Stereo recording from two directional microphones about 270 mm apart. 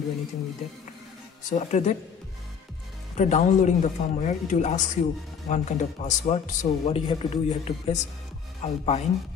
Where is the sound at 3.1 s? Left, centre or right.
Left.